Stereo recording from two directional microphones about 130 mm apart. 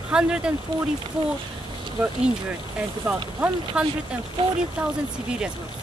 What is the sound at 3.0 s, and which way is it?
Speech, 10° right (ahead or behind).